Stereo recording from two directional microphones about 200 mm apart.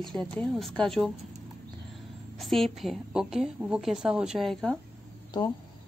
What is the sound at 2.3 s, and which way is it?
A woman's voice, centre (ahead or behind).